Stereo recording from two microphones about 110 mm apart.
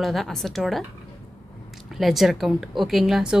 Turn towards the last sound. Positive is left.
turn(degrees=-5)  # may be behind; listen again after turning